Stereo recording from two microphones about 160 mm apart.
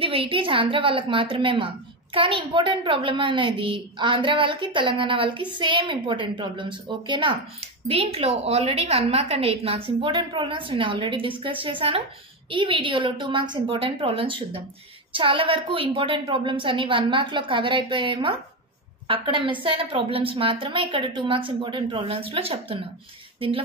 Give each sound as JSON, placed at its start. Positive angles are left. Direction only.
{"t": 0.0, "sound": "a woman's voice", "side_deg": -35}